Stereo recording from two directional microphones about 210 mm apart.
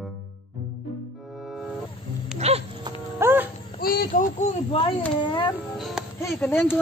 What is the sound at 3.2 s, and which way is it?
Music, 10° right (ahead or behind).